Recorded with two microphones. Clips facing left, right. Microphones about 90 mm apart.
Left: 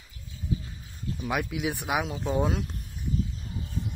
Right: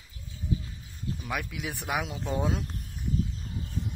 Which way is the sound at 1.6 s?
5° left (ahead or behind).